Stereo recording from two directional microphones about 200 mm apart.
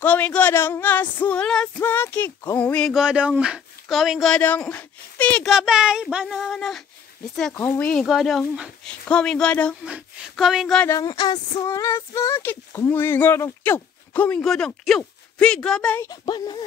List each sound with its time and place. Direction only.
0.0 s speech: 5° left (ahead or behind)
10.9 s a sound: 20° left (ahead or behind)
16.1 s speech: 20° left (ahead or behind)